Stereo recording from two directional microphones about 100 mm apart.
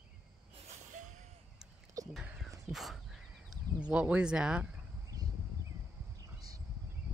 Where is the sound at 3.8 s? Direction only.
10° right (ahead or behind).